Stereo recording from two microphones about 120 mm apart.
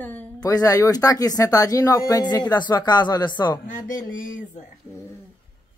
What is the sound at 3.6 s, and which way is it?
Speech, 90° left.